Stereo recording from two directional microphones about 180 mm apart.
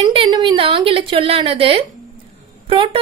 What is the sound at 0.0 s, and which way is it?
A woman's voice, 25° right (ahead or behind).